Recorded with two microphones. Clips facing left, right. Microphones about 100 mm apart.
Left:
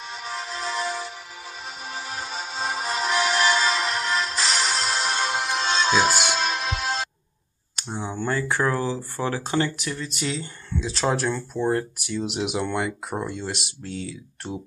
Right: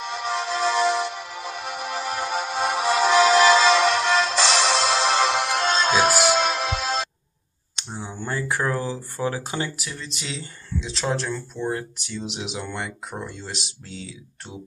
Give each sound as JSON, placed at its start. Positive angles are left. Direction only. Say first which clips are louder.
{"t": 0.0, "sound": "music", "louder": "right 7 dB", "side_deg": -75}
{"t": 5.7, "sound": "music", "louder": "even", "side_deg": -45}
{"t": 6.3, "sound": "music", "louder": "right 4 dB", "side_deg": -85}
{"t": 7.9, "sound": "a sound", "louder": "left 4 dB", "side_deg": 30}
{"t": 8.3, "sound": "speech", "louder": "left 1 dB", "side_deg": -15}
{"t": 9.8, "sound": "speech", "louder": "left 5 dB", "side_deg": 0}